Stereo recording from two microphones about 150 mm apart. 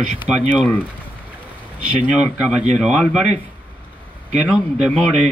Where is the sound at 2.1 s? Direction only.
5° right (ahead or behind).